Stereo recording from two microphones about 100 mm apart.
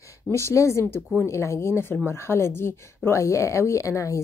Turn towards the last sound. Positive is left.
turn(degrees=30)  # may be behind; listen again after turning